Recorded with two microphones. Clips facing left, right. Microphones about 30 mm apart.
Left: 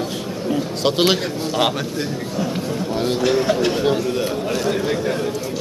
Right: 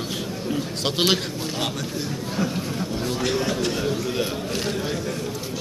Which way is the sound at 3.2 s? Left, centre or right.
Centre.